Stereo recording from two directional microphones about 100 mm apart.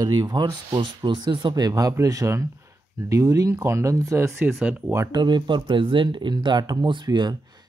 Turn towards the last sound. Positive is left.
turn(degrees=-45)  # may be behind; listen again after turning